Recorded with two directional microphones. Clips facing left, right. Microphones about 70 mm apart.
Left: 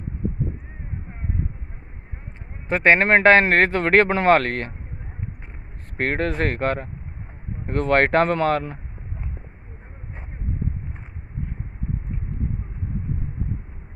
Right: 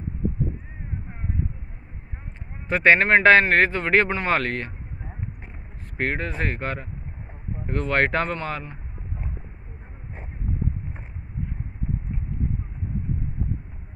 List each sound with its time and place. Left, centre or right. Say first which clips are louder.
2.7 s speech: left 1 dB; left
5.9 s speech: left 4 dB; left